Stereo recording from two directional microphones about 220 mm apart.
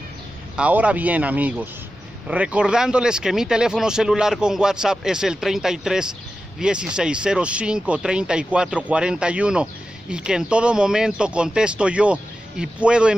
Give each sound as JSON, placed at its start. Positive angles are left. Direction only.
{"t": 0.6, "sound": "speech", "side_deg": -5}